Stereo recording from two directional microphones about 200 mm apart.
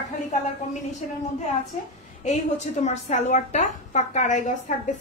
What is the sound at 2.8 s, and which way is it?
A woman's voice, 35° left (ahead or behind).